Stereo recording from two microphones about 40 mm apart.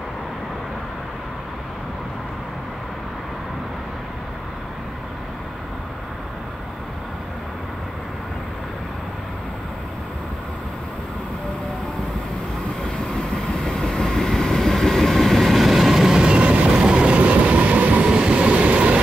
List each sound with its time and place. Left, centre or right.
13.5 s train: left; by 16.3 s centre
16.3 s vehicle: right
16.8 s train: right
18.1 s train: right